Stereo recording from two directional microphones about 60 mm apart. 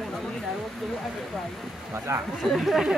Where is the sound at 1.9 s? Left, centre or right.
Right.